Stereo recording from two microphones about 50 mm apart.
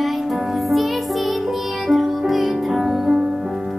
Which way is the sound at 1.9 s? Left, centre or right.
Centre.